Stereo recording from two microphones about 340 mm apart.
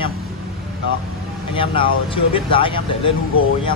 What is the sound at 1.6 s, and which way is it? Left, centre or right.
A man's voice, centre.